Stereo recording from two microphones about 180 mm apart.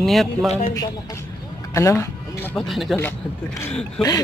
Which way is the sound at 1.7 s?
15° left (ahead or behind).